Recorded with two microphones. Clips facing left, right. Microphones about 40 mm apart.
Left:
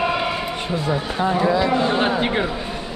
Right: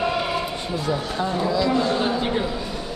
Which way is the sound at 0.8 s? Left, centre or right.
Left.